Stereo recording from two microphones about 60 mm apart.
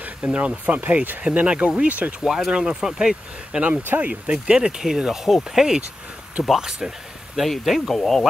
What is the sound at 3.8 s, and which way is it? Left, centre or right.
Speech, right.